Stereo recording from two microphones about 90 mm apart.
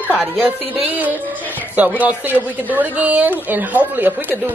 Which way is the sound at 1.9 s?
20° right (ahead or behind).